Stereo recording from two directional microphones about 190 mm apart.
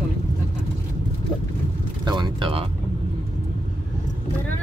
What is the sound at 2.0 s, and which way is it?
Vehicle, 25° right (ahead or behind).